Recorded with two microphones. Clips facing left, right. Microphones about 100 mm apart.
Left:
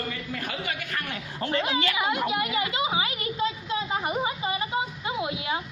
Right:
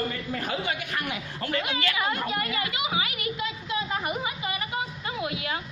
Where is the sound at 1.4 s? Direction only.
25° left (ahead or behind).